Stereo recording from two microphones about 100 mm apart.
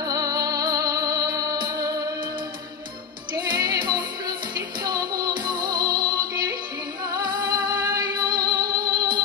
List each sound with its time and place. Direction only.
0.0 s music: 35° right (ahead or behind)
3.3 s music: 45° right (ahead or behind)